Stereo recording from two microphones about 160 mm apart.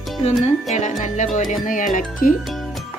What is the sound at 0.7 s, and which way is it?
Speech, 50° left (ahead or behind).